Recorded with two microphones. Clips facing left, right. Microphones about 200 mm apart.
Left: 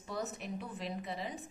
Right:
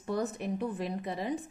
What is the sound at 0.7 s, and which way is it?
Speech, 55° right (ahead or behind).